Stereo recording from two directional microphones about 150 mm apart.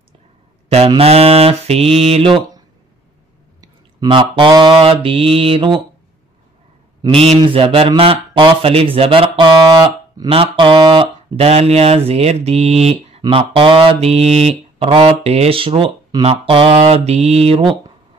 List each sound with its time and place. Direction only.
0.9 s speech: 45° right (ahead or behind)
3.6 s speech: 30° right (ahead or behind)
7.1 s speech: 40° right (ahead or behind)
10.3 s mantra: 35° right (ahead or behind)
13.3 s speech: 35° right (ahead or behind)